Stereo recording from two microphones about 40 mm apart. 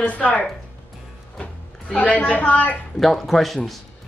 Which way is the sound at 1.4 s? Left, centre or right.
Left.